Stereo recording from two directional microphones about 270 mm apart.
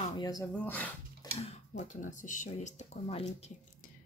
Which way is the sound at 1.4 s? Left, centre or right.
Left.